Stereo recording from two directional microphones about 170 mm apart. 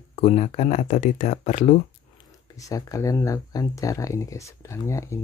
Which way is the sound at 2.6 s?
20° left (ahead or behind).